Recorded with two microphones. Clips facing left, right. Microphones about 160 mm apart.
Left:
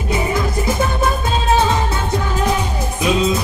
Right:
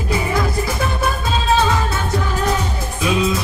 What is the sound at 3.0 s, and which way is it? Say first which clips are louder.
Music: left 2 dB; 25° left (ahead or behind).